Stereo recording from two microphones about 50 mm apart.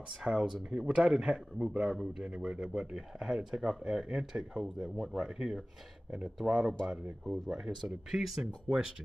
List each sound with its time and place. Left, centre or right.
0.2 s speech: centre
0.8 s speech: right
1.9 s speech: centre
2.2 s speech: centre
7.7 s speech: centre